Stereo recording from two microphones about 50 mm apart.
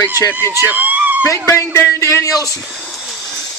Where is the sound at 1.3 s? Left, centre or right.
Left.